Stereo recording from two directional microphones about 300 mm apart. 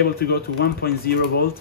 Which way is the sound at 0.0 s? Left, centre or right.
Left.